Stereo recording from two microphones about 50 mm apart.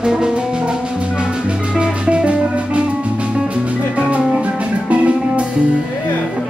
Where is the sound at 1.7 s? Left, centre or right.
Centre.